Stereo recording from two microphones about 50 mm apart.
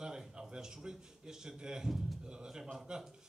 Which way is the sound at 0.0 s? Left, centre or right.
Centre.